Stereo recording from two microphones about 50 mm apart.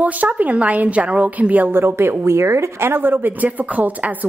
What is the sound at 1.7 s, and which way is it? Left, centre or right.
Speech, right.